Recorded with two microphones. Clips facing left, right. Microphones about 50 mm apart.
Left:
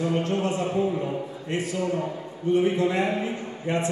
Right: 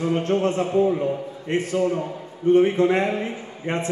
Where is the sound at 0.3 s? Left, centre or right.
Right.